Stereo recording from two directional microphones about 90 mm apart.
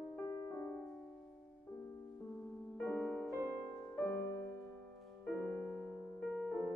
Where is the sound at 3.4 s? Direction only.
25° left (ahead or behind).